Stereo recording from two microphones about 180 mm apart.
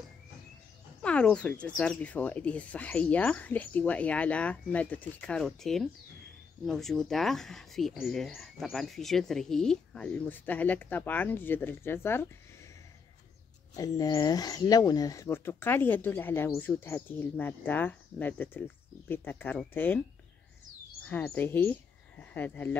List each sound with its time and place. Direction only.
1.0 s speech: 5° left (ahead or behind)
13.7 s speech: 20° left (ahead or behind)
21.1 s speech: 10° left (ahead or behind)